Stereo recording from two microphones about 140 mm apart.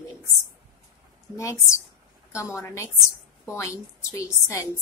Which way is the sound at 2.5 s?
20° left (ahead or behind).